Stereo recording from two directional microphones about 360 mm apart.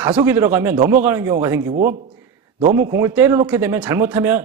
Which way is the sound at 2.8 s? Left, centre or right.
Centre.